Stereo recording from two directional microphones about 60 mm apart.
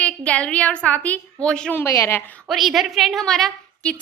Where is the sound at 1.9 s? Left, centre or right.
Left.